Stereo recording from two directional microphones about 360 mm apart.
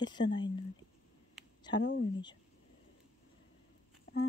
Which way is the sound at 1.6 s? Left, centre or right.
Centre.